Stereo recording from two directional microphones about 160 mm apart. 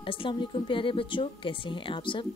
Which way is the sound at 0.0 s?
35° left (ahead or behind).